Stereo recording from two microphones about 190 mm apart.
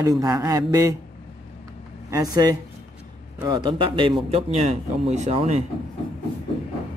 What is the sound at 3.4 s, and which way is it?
A man's voice, 25° right (ahead or behind).